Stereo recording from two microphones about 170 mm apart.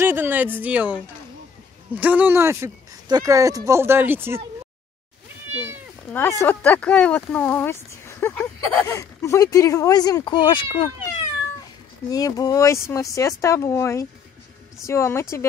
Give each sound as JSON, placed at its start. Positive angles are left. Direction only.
{"t": 0.0, "sound": "speech", "side_deg": -10}
{"t": 2.0, "sound": "speech", "side_deg": -10}
{"t": 6.1, "sound": "speech", "side_deg": 15}
{"t": 12.1, "sound": "speech", "side_deg": 20}